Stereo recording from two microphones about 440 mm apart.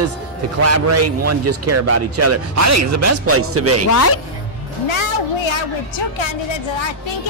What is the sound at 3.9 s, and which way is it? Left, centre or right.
Speech, left.